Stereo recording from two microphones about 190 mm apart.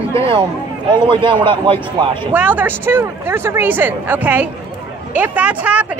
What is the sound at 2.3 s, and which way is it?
Speech, 10° right (ahead or behind).